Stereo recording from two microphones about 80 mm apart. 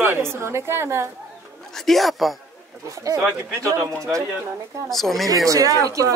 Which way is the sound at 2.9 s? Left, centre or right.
Right.